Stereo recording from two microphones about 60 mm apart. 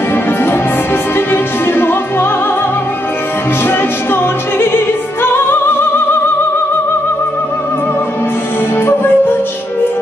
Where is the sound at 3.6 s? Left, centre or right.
Left.